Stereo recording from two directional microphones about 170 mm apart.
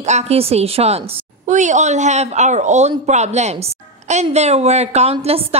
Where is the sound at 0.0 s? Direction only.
40° right (ahead or behind).